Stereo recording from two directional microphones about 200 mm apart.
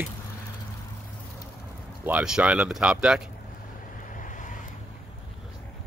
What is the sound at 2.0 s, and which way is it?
Speech, 5° right (ahead or behind).